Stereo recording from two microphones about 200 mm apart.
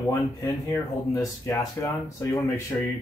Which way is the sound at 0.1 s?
15° left (ahead or behind).